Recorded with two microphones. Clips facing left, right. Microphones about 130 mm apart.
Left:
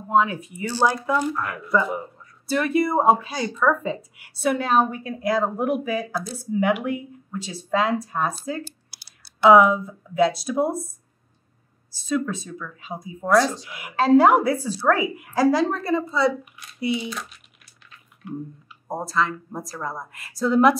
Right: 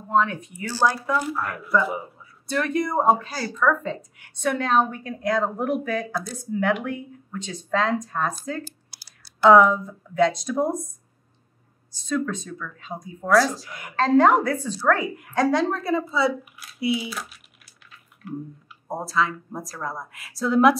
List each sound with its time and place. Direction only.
0.1 s speech: 5° left (ahead or behind)
0.7 s a woman's voice: 15° left (ahead or behind)
0.9 s a woman's voice: centre (ahead or behind)
11.9 s speech: 5° left (ahead or behind)
18.2 s chewing: centre (ahead or behind)
18.9 s speech: centre (ahead or behind)